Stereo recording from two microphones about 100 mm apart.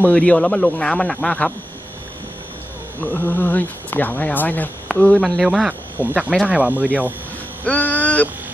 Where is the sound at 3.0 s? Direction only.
20° left (ahead or behind).